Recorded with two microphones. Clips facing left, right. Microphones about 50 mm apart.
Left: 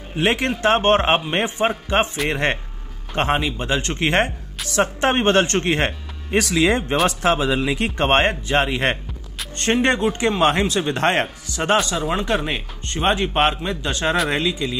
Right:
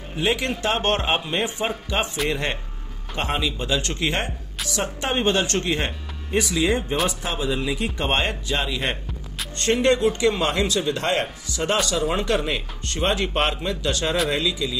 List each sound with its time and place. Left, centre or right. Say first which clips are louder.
0.2 s speech: left 3 dB; left
0.6 s speech: left 6 dB; left
11.7 s speech: left 3 dB; centre
14.3 s speech: left 2 dB; left